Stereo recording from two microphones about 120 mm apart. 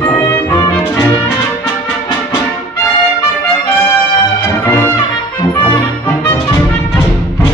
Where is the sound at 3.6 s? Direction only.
15° left (ahead or behind).